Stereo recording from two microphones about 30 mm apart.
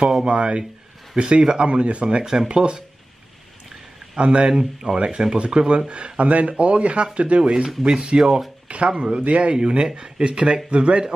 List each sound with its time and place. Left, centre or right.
0.3 s speech: right
1.1 s speech: right
1.7 s speech: right
2.4 s speech: right
4.2 s speech: right
4.5 s speech: right
6.1 s speech: right
6.5 s speech: right
7.6 s speech: right
8.6 s speech: right
9.2 s speech: right
9.5 s speech: right